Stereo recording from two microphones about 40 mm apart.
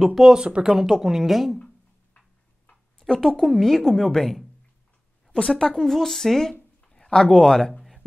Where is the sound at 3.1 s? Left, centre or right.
Centre.